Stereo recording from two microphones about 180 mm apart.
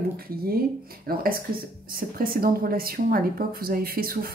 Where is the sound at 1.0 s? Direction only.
55° right (ahead or behind).